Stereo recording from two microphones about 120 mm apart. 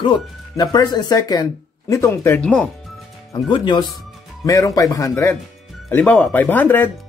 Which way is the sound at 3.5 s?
40° left (ahead or behind).